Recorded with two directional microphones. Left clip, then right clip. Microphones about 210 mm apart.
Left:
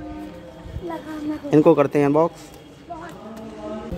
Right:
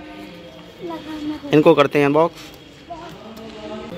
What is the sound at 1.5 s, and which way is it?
Speech, centre (ahead or behind).